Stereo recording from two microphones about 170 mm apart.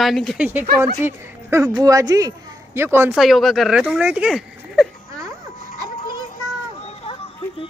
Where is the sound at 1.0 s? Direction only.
15° right (ahead or behind).